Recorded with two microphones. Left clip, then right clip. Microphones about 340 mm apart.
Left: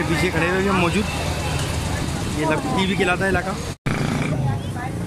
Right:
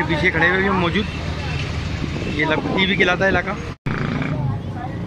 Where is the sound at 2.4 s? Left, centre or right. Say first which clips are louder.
Right 3 dB; centre.